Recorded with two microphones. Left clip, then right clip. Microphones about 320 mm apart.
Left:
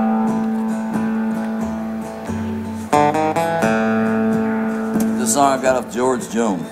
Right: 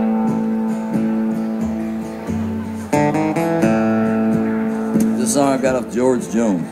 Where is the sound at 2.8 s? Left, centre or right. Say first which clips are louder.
Left 2 dB; left.